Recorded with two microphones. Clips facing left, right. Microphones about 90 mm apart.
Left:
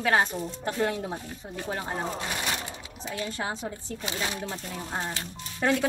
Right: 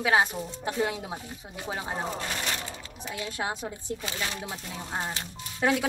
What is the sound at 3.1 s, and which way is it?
A woman's voice, 10° right (ahead or behind).